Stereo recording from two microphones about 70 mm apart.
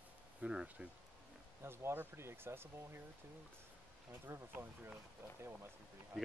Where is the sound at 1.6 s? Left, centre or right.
Right.